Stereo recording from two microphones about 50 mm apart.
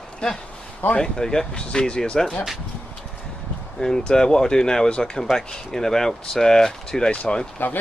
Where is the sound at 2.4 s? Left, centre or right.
Centre.